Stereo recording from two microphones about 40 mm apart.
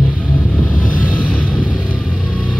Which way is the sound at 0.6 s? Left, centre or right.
Left.